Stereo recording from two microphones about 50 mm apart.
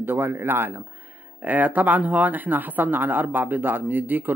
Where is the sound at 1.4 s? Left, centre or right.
Right.